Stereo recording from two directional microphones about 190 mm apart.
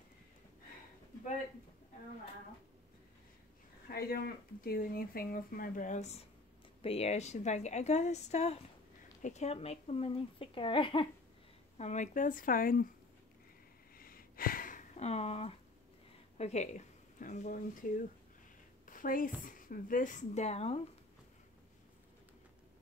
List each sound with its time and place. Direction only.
3.9 s a woman's voice: 55° left (ahead or behind); by 11.1 s 25° left (ahead or behind)
11.8 s speech: 40° left (ahead or behind)
13.9 s a sound: 50° left (ahead or behind); by 15.5 s 30° left (ahead or behind)
16.3 s speech: 35° left (ahead or behind)
18.9 s speech: 45° left (ahead or behind)